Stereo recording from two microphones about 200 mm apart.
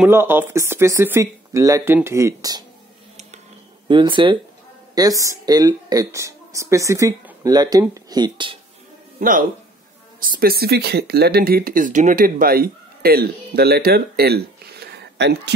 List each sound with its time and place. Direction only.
0.0 s speech: 10° right (ahead or behind)
3.9 s speech: 25° right (ahead or behind)
9.2 s speech: 40° right (ahead or behind); by 15.5 s 60° right (ahead or behind)